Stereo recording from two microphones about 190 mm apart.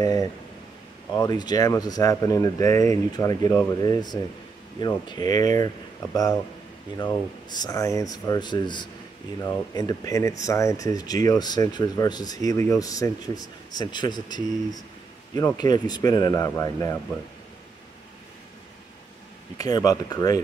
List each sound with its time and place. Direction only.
0.0 s speech: 20° left (ahead or behind)
7.0 s speech: 20° left (ahead or behind)
19.6 s speech: 20° left (ahead or behind)